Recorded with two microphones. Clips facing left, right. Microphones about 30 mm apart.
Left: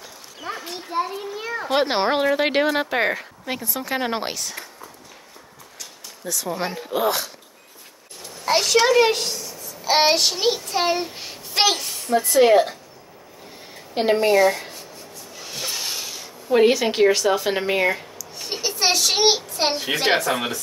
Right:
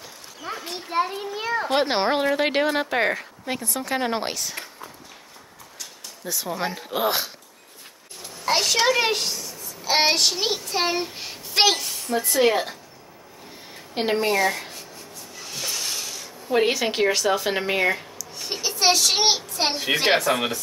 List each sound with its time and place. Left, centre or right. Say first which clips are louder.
0.6 s children playing: even; centre
0.8 s a child's voice: right 1 dB; right
1.7 s speech: left 3 dB; centre
6.2 s speech: left 2 dB; centre
6.5 s speech: even; centre
6.9 s speech: left 2 dB; centre
8.5 s a child's voice: left 3 dB; centre
13.9 s speech: left 5 dB; centre
15.3 s rub: left 1 dB; centre
16.4 s speech: left 4 dB; centre
18.3 s a sound: left 1 dB; centre
19.9 s speech: right 2 dB; centre